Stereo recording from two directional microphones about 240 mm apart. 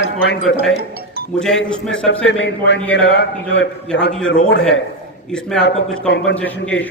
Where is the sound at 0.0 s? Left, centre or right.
Left.